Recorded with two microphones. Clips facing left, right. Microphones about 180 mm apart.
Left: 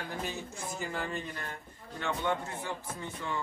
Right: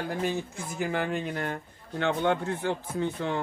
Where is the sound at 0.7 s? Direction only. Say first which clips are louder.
Right 8 dB; 70° right (ahead or behind).